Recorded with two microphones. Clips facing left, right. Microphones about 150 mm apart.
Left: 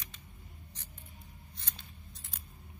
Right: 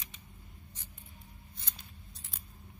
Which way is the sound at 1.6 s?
Centre (ahead or behind).